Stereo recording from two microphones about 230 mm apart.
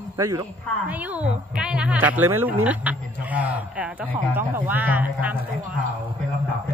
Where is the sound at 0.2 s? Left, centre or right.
Centre.